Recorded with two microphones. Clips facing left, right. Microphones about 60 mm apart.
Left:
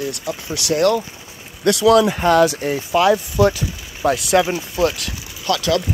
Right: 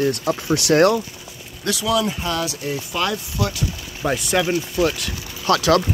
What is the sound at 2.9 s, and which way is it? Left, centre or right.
Speech, centre.